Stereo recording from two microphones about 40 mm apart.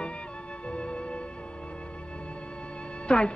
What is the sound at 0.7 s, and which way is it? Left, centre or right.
Music, left.